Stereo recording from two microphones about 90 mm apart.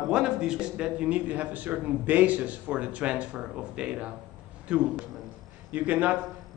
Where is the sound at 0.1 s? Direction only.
10° right (ahead or behind).